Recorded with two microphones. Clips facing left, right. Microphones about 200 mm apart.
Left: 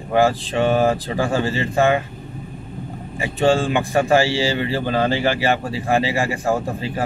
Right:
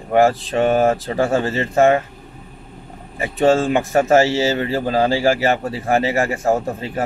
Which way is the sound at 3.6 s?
40° right (ahead or behind).